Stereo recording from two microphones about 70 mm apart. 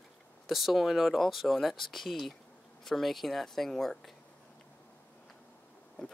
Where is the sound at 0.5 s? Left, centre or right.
Centre.